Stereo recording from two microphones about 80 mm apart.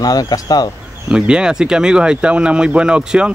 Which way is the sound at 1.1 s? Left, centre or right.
Centre.